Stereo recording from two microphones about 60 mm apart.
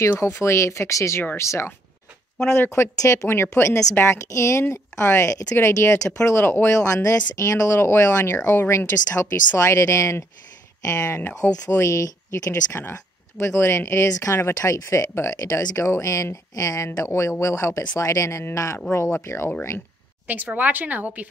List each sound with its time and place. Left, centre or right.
0.2 s speech: left
3.0 s speech: left
4.3 s speech: left
6.9 s speech: left
11.1 s speech: left
11.8 s speech: left
18.9 s speech: left
20.2 s speech: right